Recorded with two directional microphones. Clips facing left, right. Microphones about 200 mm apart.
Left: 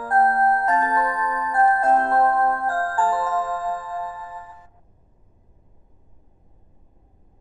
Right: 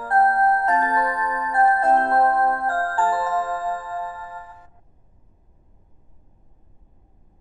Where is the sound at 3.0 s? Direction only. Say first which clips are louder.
Even; 5° right (ahead or behind).